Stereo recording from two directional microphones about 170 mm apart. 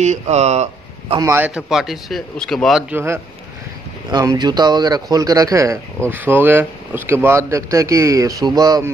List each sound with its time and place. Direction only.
0.0 s speech: 40° right (ahead or behind)
1.2 s a man's voice: 10° right (ahead or behind)
2.9 s speech: 15° right (ahead or behind)
4.1 s speech: 25° right (ahead or behind)